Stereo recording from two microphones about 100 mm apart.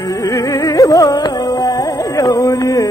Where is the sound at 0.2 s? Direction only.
35° left (ahead or behind).